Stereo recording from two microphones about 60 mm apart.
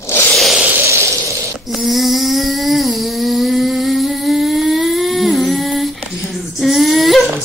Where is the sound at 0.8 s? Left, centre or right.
Right.